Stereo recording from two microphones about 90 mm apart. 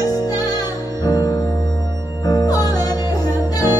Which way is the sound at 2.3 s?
45° left (ahead or behind).